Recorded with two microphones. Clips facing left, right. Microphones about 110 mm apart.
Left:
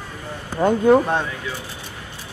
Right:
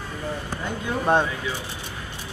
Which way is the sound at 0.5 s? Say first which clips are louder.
Left 18 dB; 55° left (ahead or behind).